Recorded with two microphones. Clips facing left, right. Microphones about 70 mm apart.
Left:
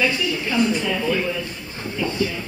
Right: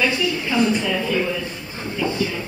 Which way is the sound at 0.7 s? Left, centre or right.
Centre.